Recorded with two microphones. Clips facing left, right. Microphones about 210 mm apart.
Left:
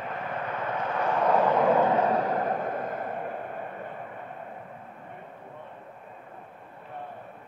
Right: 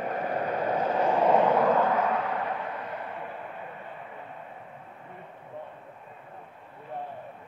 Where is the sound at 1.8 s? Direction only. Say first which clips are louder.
Left 2 dB; 25° left (ahead or behind); by 3.6 s 50° left (ahead or behind).